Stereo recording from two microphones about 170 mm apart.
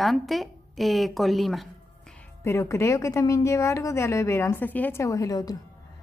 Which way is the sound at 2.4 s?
15° left (ahead or behind).